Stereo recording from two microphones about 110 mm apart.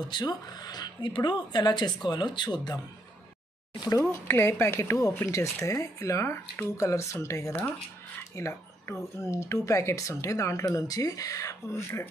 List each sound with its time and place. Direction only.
0.1 s speech: 40° left (ahead or behind)
4.0 s speech: 20° left (ahead or behind)
8.2 s a sound: 25° left (ahead or behind)
9.2 s speech: 25° left (ahead or behind)